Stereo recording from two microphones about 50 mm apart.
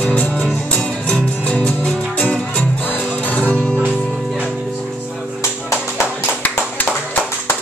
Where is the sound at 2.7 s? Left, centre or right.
Left.